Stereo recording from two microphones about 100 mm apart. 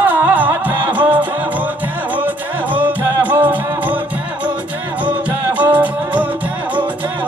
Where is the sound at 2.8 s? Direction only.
20° right (ahead or behind).